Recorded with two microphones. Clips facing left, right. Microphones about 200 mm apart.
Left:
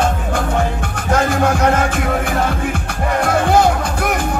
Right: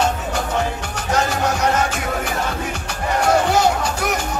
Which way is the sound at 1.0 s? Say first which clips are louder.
Left 4 dB; 55° left (ahead or behind).